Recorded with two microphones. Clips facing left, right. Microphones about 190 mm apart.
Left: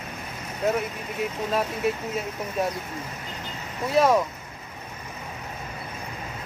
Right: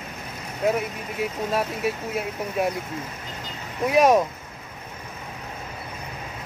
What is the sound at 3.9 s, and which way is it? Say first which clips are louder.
Speech: right 2 dB; 15° right (ahead or behind).